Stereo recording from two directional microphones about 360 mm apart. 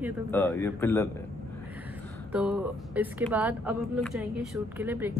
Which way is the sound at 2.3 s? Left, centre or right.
Centre.